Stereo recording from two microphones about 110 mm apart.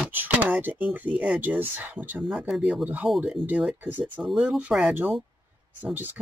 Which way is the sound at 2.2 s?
Centre (ahead or behind).